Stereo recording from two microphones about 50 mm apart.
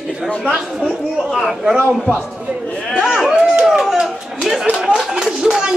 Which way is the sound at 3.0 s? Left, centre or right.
Centre.